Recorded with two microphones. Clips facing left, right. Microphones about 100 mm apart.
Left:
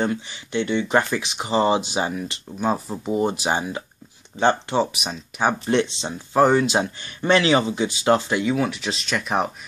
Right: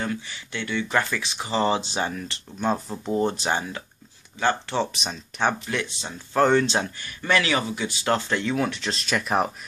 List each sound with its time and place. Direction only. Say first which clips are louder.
0.0 s speech: left 5 dB; 20° left (ahead or behind)
4.9 s speech: left 2 dB; 10° left (ahead or behind)
5.7 s speech: left 8 dB; 25° left (ahead or behind)
6.4 s speech: left 2 dB; 10° left (ahead or behind)
7.0 s speech: left 6 dB; 25° left (ahead or behind); by 9.5 s centre (ahead or behind)